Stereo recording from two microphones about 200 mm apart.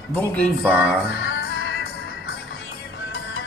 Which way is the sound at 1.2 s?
75° left (ahead or behind).